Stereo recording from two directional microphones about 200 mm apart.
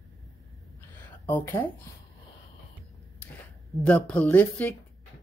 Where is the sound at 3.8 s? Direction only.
5° left (ahead or behind).